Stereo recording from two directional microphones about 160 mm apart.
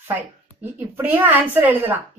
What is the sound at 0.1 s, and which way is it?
A woman's voice, 10° right (ahead or behind).